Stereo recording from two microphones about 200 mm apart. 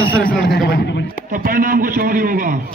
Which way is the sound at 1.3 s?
45° right (ahead or behind).